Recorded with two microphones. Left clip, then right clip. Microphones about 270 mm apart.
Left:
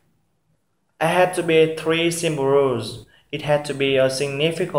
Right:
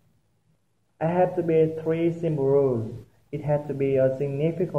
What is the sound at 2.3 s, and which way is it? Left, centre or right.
Speech, left.